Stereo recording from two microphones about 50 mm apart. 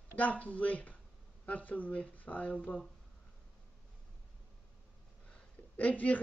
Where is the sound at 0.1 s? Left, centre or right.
Left.